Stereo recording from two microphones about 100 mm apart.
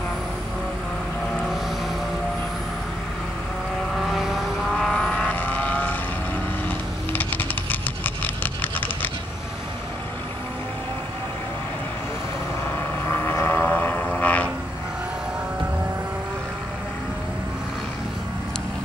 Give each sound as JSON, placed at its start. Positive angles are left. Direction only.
{"t": 1.3, "sound": "vehicle", "side_deg": 5}
{"t": 3.9, "sound": "vehicle", "side_deg": 0}
{"t": 7.1, "sound": "computer keyboard", "side_deg": 20}
{"t": 12.7, "sound": "vehicle", "side_deg": 25}